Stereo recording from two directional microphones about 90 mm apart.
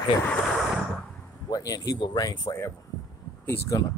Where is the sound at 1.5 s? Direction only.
45° left (ahead or behind).